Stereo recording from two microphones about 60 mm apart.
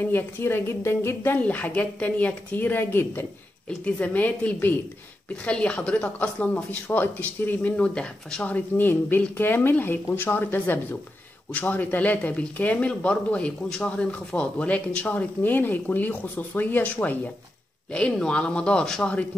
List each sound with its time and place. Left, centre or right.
0.0 s speech: left
1.4 s speech: left
3.6 s speech: left
7.7 s speech: centre
8.5 s speech: left
17.9 s speech: centre